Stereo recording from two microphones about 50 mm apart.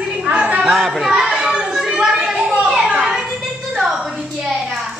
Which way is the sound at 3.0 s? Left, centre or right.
Centre.